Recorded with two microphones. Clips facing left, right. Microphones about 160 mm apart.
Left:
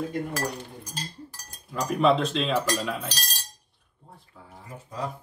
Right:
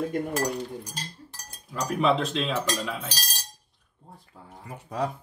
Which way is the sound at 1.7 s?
Centre (ahead or behind).